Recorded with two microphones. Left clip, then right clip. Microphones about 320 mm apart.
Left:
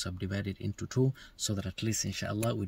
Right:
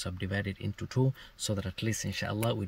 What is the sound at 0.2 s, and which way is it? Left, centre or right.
Speech, centre.